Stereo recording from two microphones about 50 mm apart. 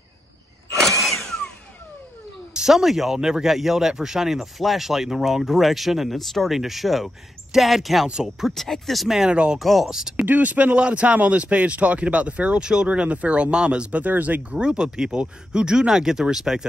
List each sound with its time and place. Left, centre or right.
2.5 s speech: centre
9.3 s speech: right
9.6 s speech: centre
10.1 s speech: right
14.6 s speech: centre